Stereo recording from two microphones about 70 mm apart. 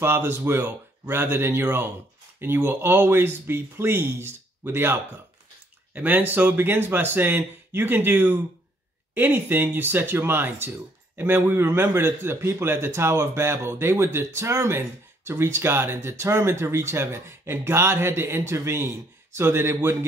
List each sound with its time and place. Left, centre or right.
0.0 s a man's voice: right